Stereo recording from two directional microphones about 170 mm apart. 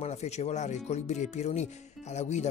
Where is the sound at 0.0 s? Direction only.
40° left (ahead or behind).